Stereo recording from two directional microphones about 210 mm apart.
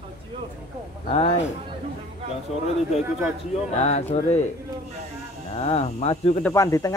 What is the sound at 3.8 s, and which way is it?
Speech, 30° left (ahead or behind).